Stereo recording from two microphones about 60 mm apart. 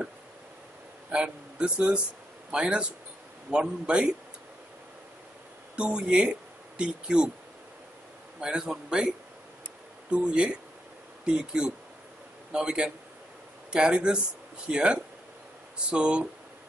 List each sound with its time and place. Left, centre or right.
1.1 s a man's voice: centre
5.8 s a man's voice: centre
8.4 s a man's voice: centre